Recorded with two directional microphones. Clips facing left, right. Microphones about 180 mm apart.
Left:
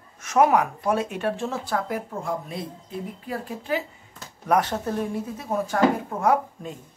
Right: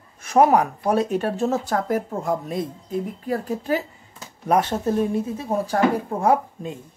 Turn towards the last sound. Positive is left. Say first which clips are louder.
# right 2 dB
turn(degrees=-30)  # may be behind; listen again after turning